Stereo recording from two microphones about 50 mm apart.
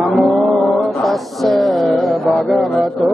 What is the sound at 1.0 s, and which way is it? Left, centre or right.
Music, centre.